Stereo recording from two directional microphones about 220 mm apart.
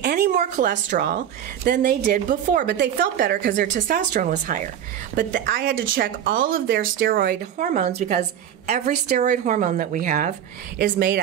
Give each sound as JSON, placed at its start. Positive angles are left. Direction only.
{"t": 0.0, "sound": "a woman's voice", "side_deg": -35}